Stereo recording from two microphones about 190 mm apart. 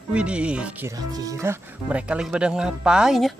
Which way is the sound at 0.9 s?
20° right (ahead or behind).